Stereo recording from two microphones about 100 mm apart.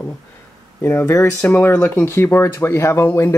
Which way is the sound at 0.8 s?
25° left (ahead or behind).